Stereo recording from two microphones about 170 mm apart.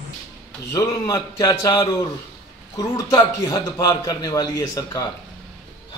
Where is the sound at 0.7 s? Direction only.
20° left (ahead or behind).